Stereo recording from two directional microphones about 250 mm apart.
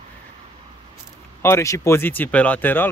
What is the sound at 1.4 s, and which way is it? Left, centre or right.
Speech, centre.